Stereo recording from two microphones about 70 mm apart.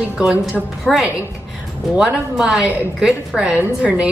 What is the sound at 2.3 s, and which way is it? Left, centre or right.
A woman's voice, centre.